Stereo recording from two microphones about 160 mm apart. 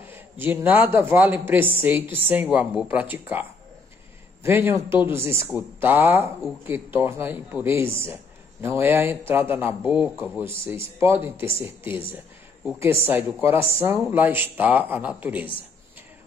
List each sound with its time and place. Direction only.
0.1 s a man's voice: 15° right (ahead or behind)